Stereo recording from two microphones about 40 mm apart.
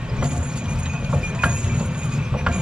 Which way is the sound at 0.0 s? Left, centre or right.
Right.